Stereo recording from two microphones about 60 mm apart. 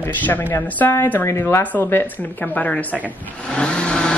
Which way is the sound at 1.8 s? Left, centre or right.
Left.